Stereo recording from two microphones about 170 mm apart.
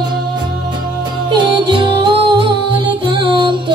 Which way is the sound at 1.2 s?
25° right (ahead or behind).